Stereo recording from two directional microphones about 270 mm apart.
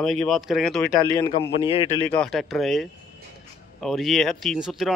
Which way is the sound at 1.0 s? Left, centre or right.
Centre.